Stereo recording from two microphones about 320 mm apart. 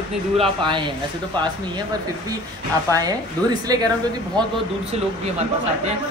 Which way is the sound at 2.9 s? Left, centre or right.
Centre.